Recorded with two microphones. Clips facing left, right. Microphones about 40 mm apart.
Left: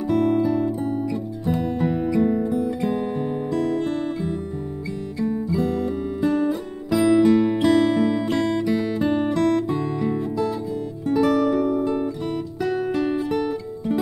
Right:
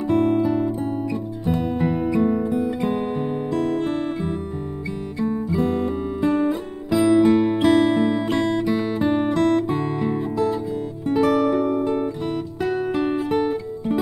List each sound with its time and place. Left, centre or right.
0.1 s music: centre
5.3 s guitar: right
6.9 s music: centre
7.2 s music: right
9.0 s music: centre
11.1 s music: centre